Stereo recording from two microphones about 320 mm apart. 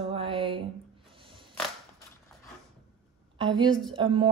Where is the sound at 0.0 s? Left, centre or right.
Centre.